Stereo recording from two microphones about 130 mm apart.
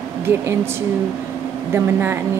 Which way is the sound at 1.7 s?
20° right (ahead or behind).